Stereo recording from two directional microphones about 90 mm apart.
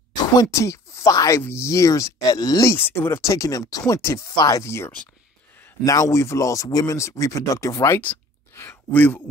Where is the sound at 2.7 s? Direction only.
25° left (ahead or behind).